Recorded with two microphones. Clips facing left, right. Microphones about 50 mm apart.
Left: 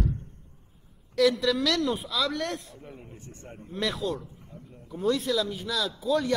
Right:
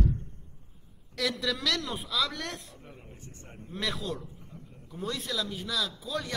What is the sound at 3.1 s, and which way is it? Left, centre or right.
Speech, left.